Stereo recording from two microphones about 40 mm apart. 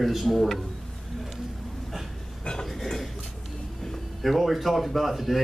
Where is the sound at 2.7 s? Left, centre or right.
Centre.